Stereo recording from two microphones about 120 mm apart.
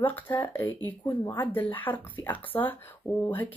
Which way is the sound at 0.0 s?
15° left (ahead or behind).